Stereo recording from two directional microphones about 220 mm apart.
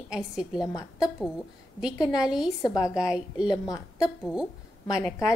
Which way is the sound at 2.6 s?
15° left (ahead or behind).